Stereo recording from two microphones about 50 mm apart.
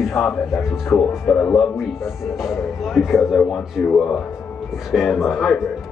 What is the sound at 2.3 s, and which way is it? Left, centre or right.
Speech, centre.